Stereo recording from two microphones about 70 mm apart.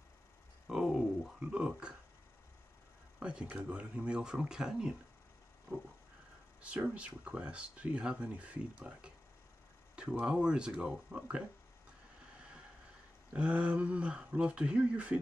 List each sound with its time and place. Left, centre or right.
0.7 s a sound: centre
1.4 s speech: centre
3.2 s speech: centre
6.6 s speech: centre
10.2 s speech: centre
13.3 s speech: centre